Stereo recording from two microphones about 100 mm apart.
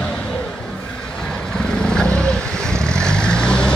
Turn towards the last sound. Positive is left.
turn(degrees=10)  # may be behind; listen again after turning